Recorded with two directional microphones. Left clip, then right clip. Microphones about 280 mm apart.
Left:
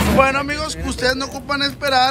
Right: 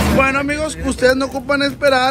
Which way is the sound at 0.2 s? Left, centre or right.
Centre.